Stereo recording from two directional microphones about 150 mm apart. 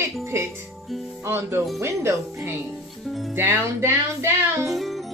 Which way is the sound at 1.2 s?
15° right (ahead or behind).